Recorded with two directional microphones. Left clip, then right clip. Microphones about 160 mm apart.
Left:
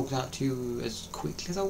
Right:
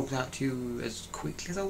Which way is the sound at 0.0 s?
5° left (ahead or behind).